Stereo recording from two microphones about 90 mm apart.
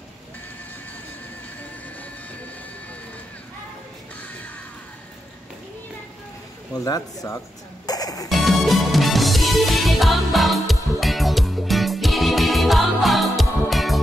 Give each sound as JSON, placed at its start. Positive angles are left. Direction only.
{"t": 6.8, "sound": "speech", "side_deg": 40}
{"t": 8.3, "sound": "music", "side_deg": 0}